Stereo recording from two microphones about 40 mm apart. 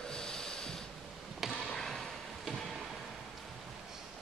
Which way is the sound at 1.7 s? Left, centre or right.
Centre.